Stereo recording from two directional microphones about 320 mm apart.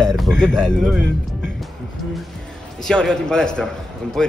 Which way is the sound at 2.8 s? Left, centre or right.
Centre.